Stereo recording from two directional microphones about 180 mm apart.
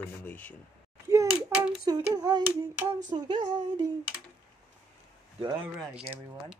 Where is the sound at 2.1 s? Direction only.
20° right (ahead or behind).